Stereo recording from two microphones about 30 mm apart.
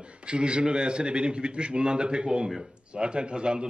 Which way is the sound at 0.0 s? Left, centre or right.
Right.